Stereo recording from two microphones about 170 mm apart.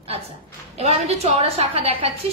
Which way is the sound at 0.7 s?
40° right (ahead or behind).